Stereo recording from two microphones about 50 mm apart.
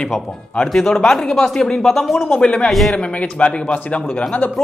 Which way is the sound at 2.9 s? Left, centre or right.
Left.